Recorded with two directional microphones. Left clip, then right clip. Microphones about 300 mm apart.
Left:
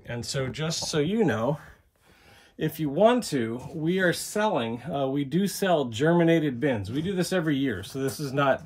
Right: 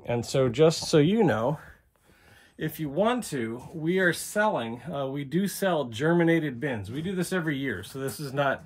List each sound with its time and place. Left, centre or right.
0.0 s speech: centre; by 1.2 s right
1.2 s speech: centre
2.6 s speech: centre